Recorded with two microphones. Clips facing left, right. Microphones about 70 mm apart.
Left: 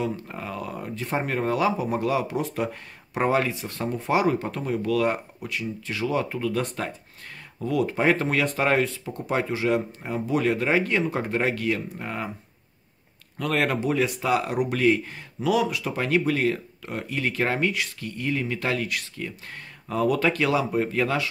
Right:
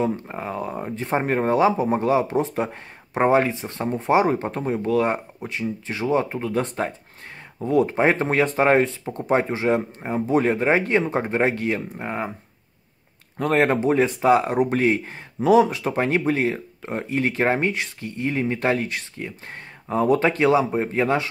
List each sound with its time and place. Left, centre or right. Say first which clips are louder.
0.3 s speech: right 4 dB; right
13.4 s speech: right 5 dB; right